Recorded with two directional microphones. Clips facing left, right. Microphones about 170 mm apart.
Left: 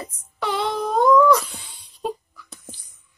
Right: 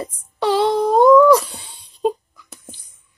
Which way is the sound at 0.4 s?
30° right (ahead or behind).